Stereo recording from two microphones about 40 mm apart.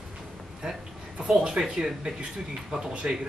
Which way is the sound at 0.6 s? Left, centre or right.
Right.